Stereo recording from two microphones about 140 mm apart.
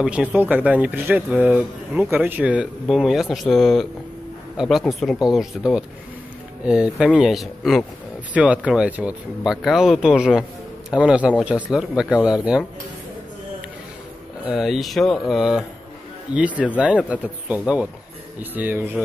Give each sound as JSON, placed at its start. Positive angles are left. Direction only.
{"t": 0.0, "sound": "speech", "side_deg": -10}
{"t": 14.4, "sound": "speech", "side_deg": 0}